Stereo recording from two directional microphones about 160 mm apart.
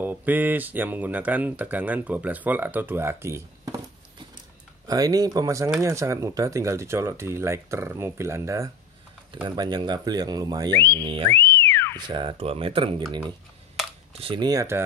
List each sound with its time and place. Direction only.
0.0 s speech: 10° right (ahead or behind)
4.8 s speech: 25° right (ahead or behind)
10.7 s speech: 10° left (ahead or behind)
11.0 s speech: 35° right (ahead or behind)
11.4 s whistling: 15° left (ahead or behind)
12.1 s speech: 30° right (ahead or behind)
14.1 s speech: 35° right (ahead or behind)